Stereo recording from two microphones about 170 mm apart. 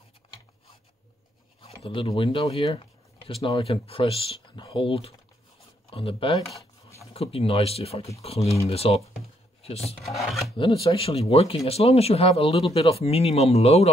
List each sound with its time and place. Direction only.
1.8 s speech: 35° left (ahead or behind)
10.0 s filing: centre (ahead or behind)
10.6 s speech: 30° left (ahead or behind)